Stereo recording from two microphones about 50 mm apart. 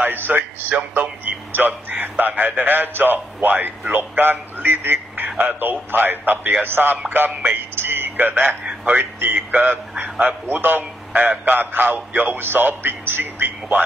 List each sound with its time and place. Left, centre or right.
0.0 s a man's voice: right
7.7 s a sound: right
8.8 s a man's voice: right